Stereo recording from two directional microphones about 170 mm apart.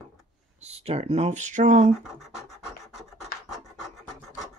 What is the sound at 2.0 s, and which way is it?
Scratch, centre (ahead or behind).